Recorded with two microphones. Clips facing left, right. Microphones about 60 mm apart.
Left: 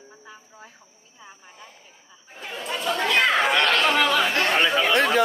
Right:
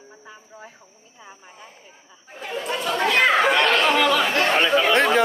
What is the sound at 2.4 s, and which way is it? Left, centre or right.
Speech, centre.